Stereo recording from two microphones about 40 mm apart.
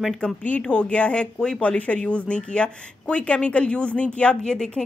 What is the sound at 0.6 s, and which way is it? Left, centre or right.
Speech, left.